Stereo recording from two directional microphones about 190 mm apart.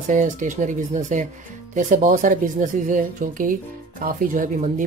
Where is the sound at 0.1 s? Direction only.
40° right (ahead or behind).